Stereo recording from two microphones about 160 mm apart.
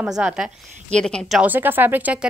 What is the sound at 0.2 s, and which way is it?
Speech, 5° right (ahead or behind).